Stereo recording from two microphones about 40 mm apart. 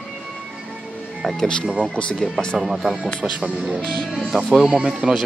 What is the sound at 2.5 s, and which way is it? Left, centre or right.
Speech, centre.